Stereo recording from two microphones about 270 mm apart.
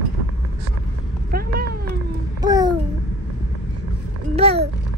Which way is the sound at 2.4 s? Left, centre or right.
Centre.